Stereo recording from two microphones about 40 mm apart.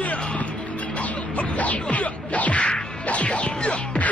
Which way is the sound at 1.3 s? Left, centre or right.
Left.